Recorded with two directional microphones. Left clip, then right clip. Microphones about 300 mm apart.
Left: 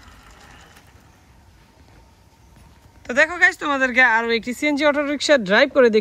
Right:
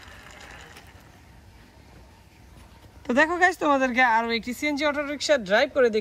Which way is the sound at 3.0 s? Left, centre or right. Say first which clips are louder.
Left 4 dB; centre.